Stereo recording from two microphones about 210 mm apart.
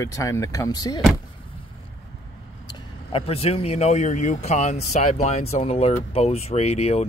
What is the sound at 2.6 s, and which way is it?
Speech, 25° left (ahead or behind).